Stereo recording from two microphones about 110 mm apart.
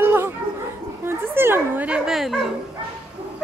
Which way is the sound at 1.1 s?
20° right (ahead or behind).